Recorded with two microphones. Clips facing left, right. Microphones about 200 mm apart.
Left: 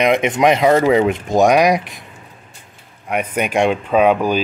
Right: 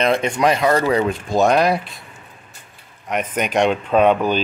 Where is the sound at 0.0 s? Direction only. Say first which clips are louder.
Left 3 dB; 20° left (ahead or behind).